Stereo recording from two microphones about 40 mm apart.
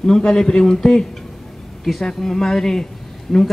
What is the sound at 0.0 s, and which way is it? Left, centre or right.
Speech, centre.